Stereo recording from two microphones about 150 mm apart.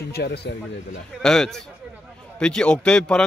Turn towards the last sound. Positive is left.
turn(degrees=5)  # may be behind; listen again after turning